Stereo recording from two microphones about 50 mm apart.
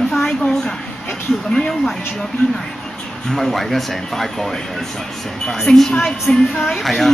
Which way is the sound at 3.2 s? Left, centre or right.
Centre.